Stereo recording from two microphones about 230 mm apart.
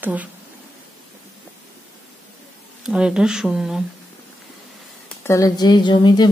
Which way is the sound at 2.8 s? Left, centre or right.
Centre.